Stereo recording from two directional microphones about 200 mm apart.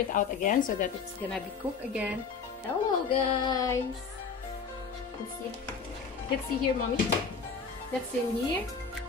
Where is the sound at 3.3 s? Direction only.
20° left (ahead or behind).